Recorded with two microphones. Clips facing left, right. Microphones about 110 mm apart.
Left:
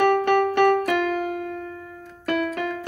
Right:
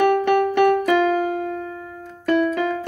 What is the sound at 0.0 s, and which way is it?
Music, 50° left (ahead or behind).